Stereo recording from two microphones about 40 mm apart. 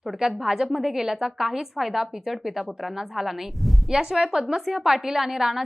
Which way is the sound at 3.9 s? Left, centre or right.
Centre.